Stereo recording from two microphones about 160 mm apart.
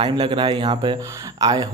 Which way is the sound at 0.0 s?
30° right (ahead or behind).